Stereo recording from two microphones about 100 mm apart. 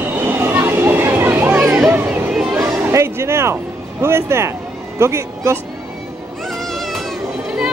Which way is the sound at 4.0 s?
25° right (ahead or behind).